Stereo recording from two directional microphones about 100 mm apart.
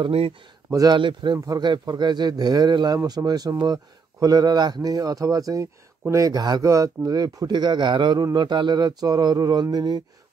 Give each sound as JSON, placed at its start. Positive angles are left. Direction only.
{"t": 0.7, "sound": "speech", "side_deg": -35}
{"t": 0.9, "sound": "speech", "side_deg": -50}